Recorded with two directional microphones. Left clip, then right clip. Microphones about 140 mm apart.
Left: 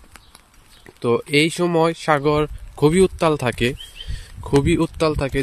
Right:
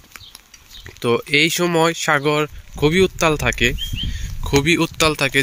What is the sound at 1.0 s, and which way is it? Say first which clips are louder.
Speech: right 1 dB; 10° left (ahead or behind).